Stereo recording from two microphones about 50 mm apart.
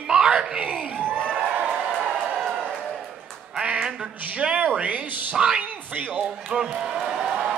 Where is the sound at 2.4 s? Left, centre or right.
Centre.